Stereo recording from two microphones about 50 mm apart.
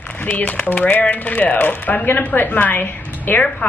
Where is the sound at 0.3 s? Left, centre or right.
Left.